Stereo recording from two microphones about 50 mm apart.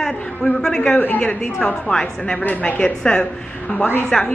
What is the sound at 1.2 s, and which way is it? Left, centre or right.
A woman's voice, centre.